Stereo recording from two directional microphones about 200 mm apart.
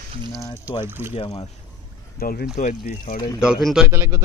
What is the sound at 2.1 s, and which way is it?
Speech, 50° left (ahead or behind).